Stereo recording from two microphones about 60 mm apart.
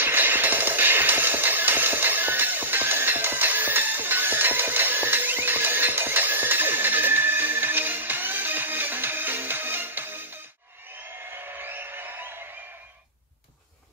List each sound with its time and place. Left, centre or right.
0.0 s music: right
11.4 s music: right